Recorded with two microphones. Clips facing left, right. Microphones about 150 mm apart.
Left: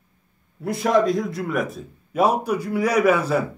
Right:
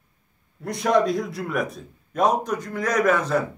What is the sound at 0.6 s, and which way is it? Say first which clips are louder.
A man's voice: left 1 dB; centre (ahead or behind).